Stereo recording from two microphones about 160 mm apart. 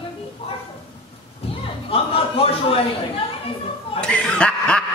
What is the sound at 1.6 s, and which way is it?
Chuckle, 35° left (ahead or behind).